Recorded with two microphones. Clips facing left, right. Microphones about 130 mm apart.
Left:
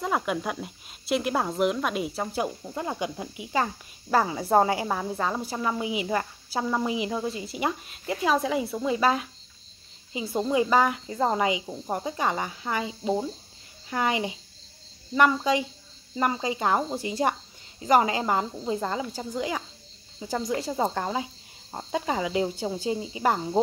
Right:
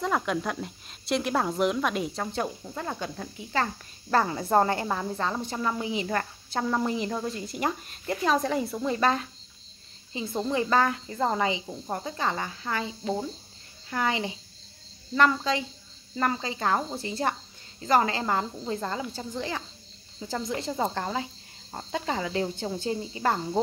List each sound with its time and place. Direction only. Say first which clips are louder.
0.0 s a woman's voice: even; 5° left (ahead or behind)